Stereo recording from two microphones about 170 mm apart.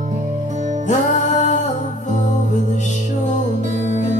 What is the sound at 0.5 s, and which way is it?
Music, 45° right (ahead or behind).